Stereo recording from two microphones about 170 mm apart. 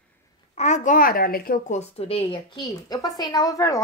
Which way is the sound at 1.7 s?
40° left (ahead or behind).